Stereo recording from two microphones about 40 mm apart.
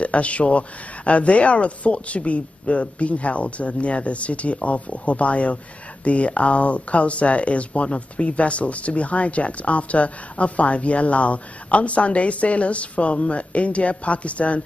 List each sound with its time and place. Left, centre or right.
0.0 s speech: left